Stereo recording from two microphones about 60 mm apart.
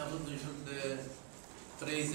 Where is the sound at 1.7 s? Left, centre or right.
Centre.